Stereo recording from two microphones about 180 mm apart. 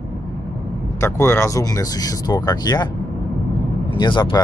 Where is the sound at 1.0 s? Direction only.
15° left (ahead or behind).